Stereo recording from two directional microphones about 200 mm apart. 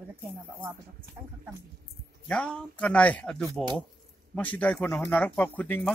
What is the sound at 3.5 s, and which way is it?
Speech, 20° right (ahead or behind).